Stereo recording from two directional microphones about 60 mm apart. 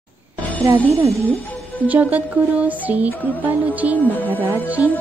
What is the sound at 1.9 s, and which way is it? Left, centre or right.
Speech, right.